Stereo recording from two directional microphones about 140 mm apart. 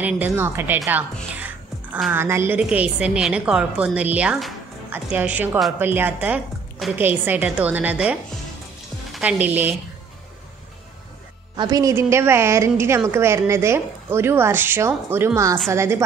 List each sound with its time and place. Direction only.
0.0 s a woman's voice: 15° right (ahead or behind)
2.1 s a woman's voice: 20° right (ahead or behind)
11.5 s a woman's voice: 30° right (ahead or behind)